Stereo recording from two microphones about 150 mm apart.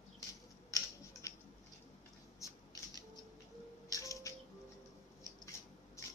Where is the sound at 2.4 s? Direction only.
25° left (ahead or behind).